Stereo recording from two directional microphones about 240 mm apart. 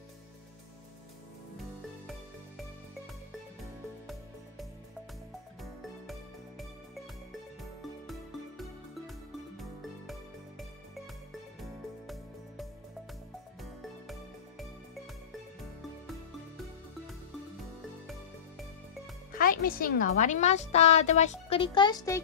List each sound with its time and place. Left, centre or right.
7.6 s music: centre
11.6 s music: centre
19.3 s speech: left; by 22.2 s centre